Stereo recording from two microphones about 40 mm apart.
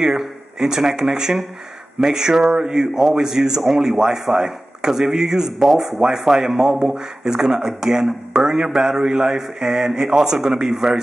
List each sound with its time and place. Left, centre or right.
0.0 s a man's voice: centre